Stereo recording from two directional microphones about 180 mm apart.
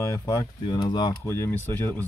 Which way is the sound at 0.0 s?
20° left (ahead or behind).